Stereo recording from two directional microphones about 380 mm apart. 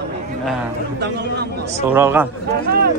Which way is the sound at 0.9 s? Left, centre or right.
Right.